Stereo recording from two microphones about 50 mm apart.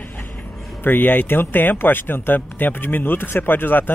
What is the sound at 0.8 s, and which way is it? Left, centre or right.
Speech, left.